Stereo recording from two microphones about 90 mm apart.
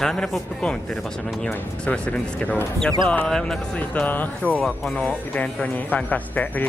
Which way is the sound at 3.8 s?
20° left (ahead or behind).